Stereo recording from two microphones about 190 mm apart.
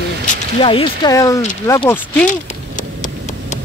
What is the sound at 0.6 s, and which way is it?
Speech, 30° left (ahead or behind).